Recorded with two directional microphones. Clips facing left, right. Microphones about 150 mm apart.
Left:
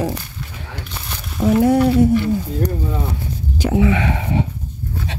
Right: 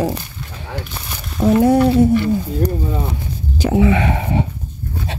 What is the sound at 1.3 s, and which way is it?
Speech, 30° right (ahead or behind).